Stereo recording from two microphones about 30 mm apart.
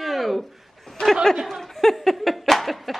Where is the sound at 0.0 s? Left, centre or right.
Centre.